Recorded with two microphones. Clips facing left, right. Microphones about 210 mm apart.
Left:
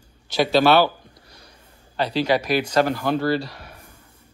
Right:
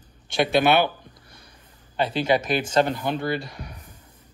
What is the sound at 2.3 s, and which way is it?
A man's voice, 25° right (ahead or behind).